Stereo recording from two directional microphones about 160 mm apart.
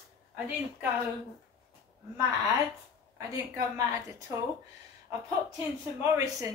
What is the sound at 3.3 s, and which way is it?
Speech, 20° right (ahead or behind).